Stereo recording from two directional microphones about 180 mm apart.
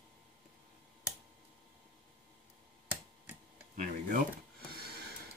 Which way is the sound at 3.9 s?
50° right (ahead or behind).